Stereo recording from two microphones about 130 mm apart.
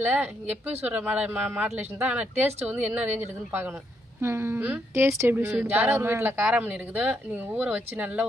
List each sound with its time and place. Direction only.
0.0 s speech: 15° right (ahead or behind)
5.5 s speech: 10° right (ahead or behind)